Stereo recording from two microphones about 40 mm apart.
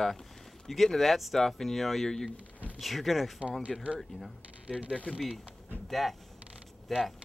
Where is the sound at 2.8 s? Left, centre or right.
Centre.